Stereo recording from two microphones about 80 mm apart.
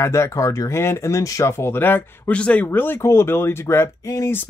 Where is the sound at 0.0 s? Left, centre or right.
Left.